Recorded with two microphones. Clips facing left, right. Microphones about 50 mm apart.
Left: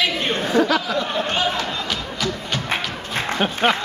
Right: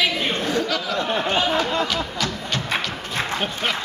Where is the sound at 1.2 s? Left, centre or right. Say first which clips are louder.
Right 1 dB; centre.